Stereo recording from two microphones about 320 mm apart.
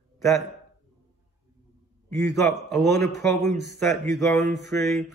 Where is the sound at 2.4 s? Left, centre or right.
Centre.